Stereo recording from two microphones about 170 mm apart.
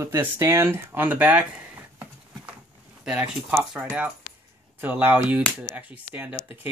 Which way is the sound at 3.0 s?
10° right (ahead or behind).